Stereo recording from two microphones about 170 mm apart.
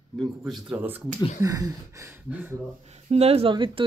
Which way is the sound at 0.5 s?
5° right (ahead or behind).